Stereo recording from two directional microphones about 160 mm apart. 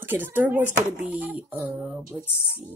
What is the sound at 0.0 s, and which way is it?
A woman's voice, 10° right (ahead or behind).